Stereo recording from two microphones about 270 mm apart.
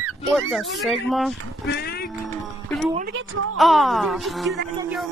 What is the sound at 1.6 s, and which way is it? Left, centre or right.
Speech, left.